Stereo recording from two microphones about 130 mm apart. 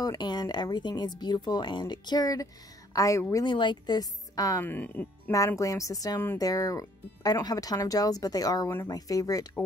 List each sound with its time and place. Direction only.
0.0 s speech: 30° left (ahead or behind)
3.4 s speech: 35° left (ahead or behind)
4.6 s speech: 15° left (ahead or behind)
5.6 s speech: 25° left (ahead or behind)